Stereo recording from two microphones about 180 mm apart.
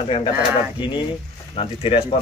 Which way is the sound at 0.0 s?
30° left (ahead or behind).